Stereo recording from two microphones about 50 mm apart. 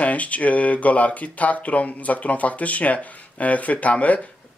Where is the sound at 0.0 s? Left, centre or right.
Left.